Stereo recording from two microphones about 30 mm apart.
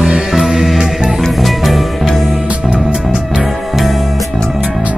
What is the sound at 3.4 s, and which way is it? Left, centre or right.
Music, centre.